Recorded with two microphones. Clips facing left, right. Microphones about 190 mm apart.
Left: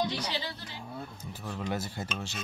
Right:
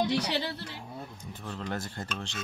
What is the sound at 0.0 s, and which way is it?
Speech, 70° right (ahead or behind).